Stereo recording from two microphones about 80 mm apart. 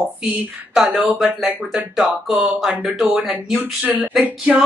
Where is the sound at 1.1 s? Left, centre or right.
Centre.